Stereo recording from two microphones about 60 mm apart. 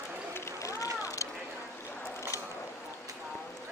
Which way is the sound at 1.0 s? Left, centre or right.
Left.